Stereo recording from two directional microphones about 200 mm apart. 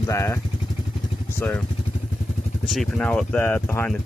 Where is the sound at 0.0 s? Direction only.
15° left (ahead or behind).